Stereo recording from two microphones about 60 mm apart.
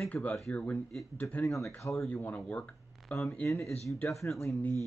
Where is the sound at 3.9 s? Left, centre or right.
Left.